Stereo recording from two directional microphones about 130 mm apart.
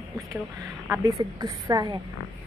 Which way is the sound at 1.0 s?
25° right (ahead or behind).